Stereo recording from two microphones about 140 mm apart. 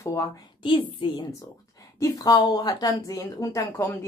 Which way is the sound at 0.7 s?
35° left (ahead or behind).